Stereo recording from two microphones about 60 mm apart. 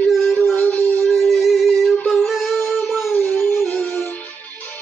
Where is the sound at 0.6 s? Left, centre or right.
Left.